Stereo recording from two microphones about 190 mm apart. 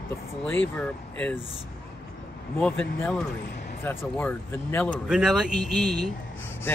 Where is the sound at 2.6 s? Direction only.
10° left (ahead or behind).